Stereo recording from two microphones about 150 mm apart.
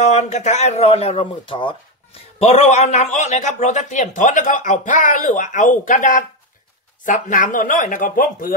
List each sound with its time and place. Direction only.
0.0 s speech: 50° left (ahead or behind)
2.3 s a man's voice: 45° left (ahead or behind); by 8.5 s 65° left (ahead or behind)